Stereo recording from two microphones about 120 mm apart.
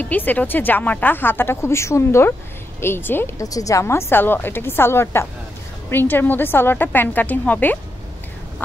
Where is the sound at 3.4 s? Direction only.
30° left (ahead or behind).